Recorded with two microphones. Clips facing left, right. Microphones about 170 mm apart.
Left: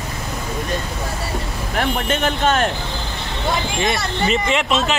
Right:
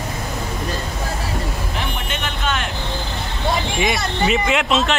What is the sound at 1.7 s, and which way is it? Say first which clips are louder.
Vehicle: left 6 dB; 40° left (ahead or behind).